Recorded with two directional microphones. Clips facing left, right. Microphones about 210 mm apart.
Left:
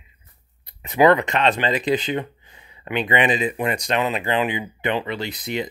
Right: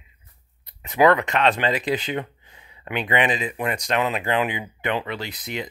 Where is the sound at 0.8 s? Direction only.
Centre (ahead or behind).